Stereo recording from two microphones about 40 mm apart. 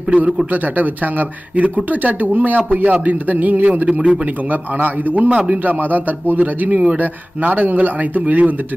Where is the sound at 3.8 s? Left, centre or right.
Right.